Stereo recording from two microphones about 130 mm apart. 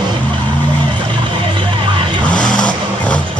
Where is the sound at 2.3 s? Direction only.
5° left (ahead or behind).